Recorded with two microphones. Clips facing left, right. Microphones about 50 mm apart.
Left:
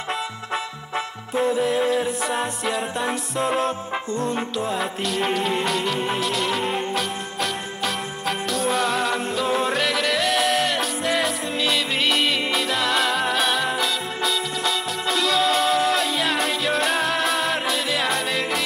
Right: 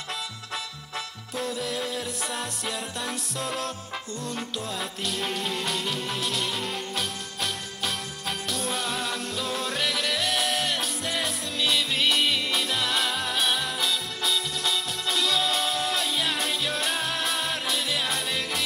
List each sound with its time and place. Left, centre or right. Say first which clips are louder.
0.9 s music: left 9 dB; left
3.0 s music: left 8 dB; centre
5.2 s music: left 8 dB; centre
5.9 s music: left 7 dB; centre
6.2 s music: left 6 dB; centre
7.8 s music: left 6 dB; centre